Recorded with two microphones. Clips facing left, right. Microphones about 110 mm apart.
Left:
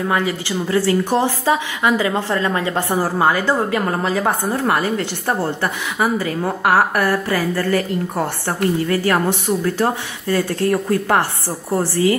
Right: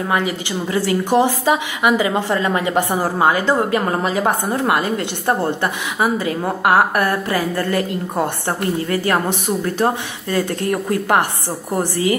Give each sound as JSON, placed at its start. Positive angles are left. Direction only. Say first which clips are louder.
{"t": 0.1, "sound": "a woman's voice", "louder": "even", "side_deg": -20}